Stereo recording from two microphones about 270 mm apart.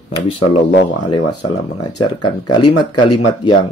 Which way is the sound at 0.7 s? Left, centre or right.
Left.